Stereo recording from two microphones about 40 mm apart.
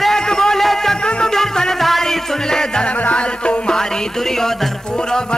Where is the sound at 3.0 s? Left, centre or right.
Left.